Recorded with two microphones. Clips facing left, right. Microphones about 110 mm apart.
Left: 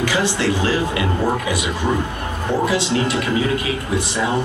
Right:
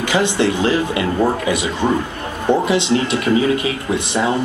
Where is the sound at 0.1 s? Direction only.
20° right (ahead or behind).